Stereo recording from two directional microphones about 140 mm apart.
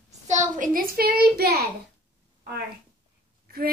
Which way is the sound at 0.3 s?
80° right.